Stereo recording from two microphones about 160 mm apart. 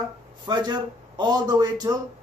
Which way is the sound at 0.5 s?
25° right (ahead or behind).